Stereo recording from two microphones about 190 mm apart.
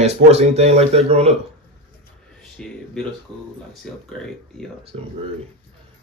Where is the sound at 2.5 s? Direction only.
5° left (ahead or behind).